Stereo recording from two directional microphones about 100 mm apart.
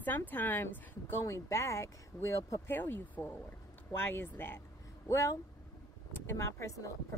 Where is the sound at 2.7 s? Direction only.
20° left (ahead or behind).